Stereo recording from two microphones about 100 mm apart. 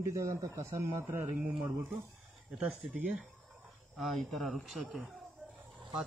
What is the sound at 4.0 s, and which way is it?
Speech, centre (ahead or behind).